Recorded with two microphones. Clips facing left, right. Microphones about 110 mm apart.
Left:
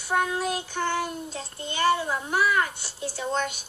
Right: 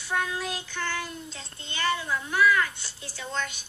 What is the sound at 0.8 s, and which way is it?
Speech, 30° left (ahead or behind).